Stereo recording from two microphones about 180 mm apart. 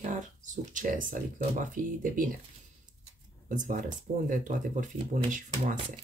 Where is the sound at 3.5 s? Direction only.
45° right (ahead or behind).